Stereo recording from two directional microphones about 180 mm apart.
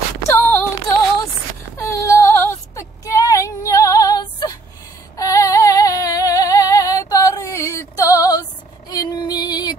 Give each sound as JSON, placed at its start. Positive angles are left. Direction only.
{"t": 0.3, "sound": "female singing", "side_deg": 10}
{"t": 1.8, "sound": "female singing", "side_deg": 15}